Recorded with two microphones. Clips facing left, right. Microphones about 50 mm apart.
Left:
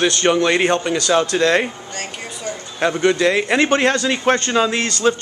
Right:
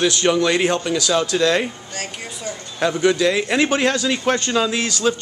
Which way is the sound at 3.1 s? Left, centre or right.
Centre.